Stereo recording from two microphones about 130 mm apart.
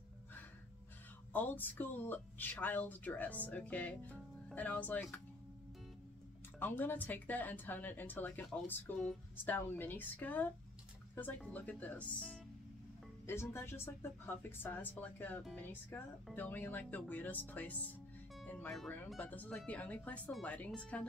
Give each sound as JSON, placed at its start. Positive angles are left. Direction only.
{"t": 1.3, "sound": "speech", "side_deg": 15}
{"t": 6.6, "sound": "speech", "side_deg": 15}
{"t": 13.3, "sound": "speech", "side_deg": 20}
{"t": 18.4, "sound": "music", "side_deg": 10}
{"t": 19.1, "sound": "speech", "side_deg": 10}